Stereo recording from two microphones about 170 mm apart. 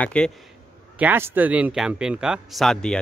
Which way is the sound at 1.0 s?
10° right (ahead or behind).